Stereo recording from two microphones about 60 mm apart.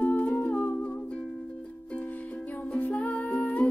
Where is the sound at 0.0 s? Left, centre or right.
Left.